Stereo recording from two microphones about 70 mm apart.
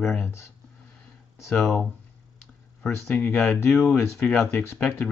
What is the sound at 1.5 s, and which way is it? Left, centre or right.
Speech, left.